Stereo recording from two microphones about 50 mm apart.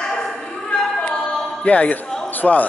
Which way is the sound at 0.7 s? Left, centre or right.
Left.